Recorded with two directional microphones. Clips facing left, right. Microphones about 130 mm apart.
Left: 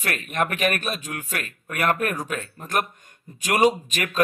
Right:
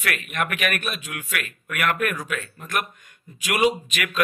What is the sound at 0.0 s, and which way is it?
Speech, 35° left (ahead or behind).